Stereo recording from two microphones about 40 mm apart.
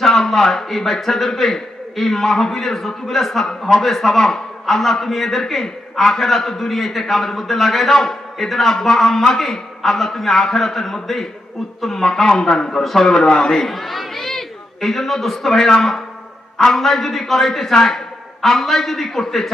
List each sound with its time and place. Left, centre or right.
0.0 s a man's voice: centre
13.7 s a man's voice: centre